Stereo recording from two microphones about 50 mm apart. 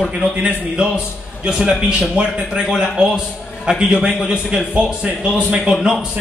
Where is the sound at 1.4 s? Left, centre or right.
Centre.